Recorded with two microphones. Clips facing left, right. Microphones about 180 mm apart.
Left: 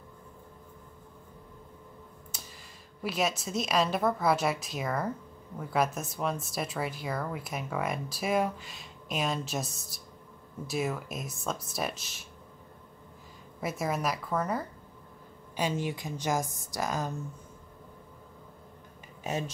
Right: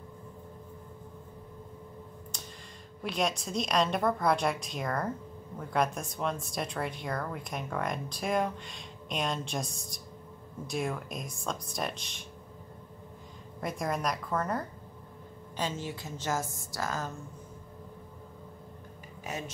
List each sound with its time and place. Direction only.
2.3 s a sound: 5° left (ahead or behind)
3.0 s speech: 5° left (ahead or behind)
13.6 s speech: 5° left (ahead or behind)
15.5 s a woman's voice: 15° left (ahead or behind)
19.2 s speech: 30° left (ahead or behind)